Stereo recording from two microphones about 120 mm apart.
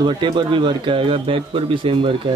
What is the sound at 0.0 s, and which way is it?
Speech, 40° right (ahead or behind).